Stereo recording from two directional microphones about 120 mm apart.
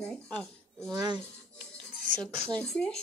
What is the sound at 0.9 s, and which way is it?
Speech, 35° right (ahead or behind).